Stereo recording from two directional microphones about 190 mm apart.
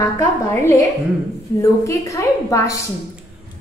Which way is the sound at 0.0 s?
15° left (ahead or behind).